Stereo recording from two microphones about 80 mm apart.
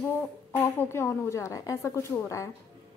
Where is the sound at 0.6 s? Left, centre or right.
Left.